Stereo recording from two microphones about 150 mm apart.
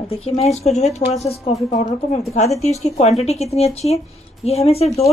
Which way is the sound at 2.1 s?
50° left (ahead or behind).